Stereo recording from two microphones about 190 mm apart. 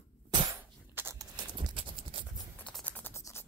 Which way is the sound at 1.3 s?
25° right (ahead or behind).